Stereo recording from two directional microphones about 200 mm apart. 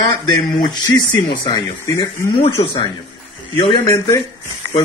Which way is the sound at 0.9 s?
20° left (ahead or behind).